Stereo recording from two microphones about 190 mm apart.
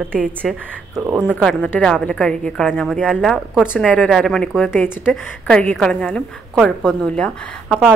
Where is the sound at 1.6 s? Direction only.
10° left (ahead or behind).